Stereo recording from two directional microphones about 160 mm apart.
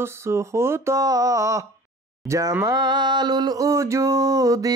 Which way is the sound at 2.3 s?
20° right (ahead or behind).